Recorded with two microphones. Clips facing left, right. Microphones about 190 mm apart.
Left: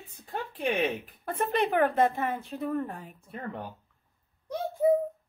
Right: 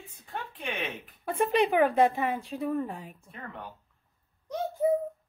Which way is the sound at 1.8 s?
15° right (ahead or behind).